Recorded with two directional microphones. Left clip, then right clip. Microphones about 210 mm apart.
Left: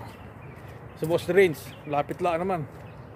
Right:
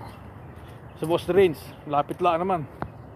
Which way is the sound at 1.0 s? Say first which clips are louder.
Right 1 dB; centre (ahead or behind).